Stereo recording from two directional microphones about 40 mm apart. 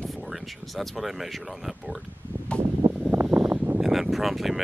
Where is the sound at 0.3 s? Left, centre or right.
Centre.